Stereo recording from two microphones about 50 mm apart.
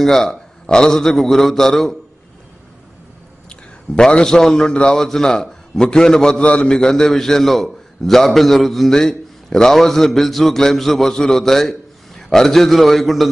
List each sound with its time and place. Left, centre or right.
0.0 s a man's voice: centre
3.4 s a man's voice: centre
6.8 s a man's voice: centre